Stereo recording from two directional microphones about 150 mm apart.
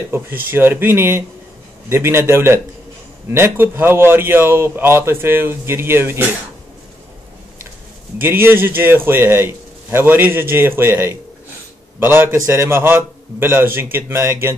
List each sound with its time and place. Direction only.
0.5 s a man's voice: 15° right (ahead or behind)
8.2 s a man's voice: 15° right (ahead or behind)